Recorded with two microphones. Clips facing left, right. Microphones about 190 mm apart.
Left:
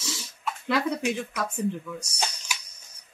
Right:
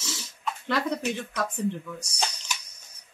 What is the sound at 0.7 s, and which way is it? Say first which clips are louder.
Speech: left 2 dB; 10° left (ahead or behind).